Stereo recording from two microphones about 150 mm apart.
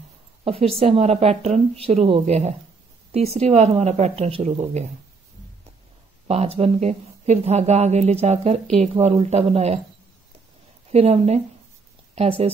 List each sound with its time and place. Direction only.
0.4 s a woman's voice: 40° right (ahead or behind)
6.2 s speech: 45° right (ahead or behind)
10.9 s speech: 45° right (ahead or behind)